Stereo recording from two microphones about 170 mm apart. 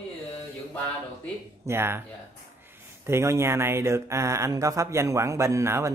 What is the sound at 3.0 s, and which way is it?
Speech, 15° right (ahead or behind).